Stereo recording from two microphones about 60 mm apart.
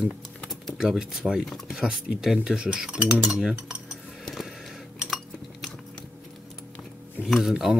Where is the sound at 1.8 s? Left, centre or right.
Centre.